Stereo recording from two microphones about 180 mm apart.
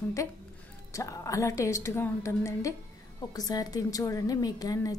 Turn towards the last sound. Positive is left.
turn(degrees=20)  # may be behind; listen again after turning